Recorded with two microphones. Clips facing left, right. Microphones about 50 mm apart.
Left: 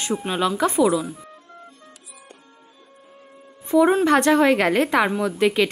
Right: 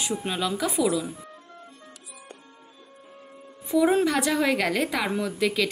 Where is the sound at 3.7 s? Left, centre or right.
Left.